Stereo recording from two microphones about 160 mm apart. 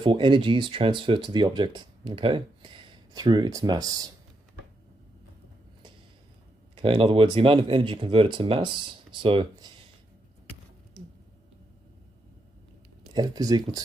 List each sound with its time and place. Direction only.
0.0 s speech: 30° right (ahead or behind)
6.7 s speech: 30° right (ahead or behind)
13.1 s speech: 25° right (ahead or behind)